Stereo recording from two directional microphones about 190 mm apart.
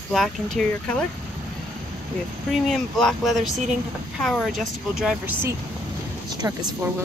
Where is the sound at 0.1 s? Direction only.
Centre (ahead or behind).